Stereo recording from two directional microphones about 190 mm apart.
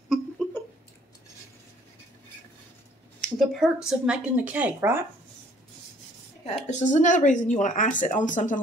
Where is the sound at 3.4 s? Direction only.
Centre (ahead or behind).